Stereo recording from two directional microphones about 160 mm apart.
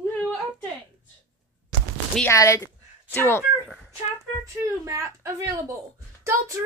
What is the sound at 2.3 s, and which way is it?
Speech, 20° left (ahead or behind).